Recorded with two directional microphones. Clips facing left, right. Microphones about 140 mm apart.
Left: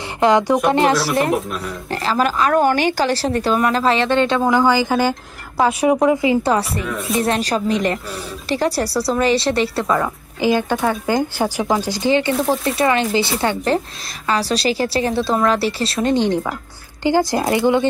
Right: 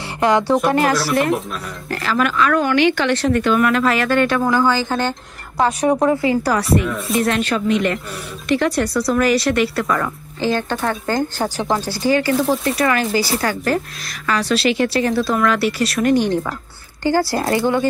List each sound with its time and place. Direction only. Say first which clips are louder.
0.2 s a woman's voice: left 1 dB; 15° left (ahead or behind)
0.9 s speech: even; centre (ahead or behind)
1.9 s speech: left 1 dB; 30° left (ahead or behind)
6.8 s speech: right 1 dB; centre (ahead or behind)
7.2 s a woman's voice: even; 30° left (ahead or behind)